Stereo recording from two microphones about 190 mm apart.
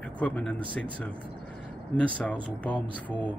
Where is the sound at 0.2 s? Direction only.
5° left (ahead or behind).